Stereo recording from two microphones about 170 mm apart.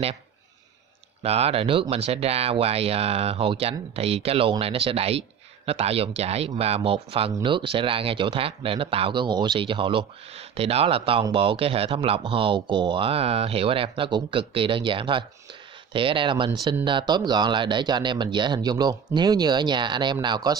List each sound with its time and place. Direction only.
1.2 s speech: 35° right (ahead or behind)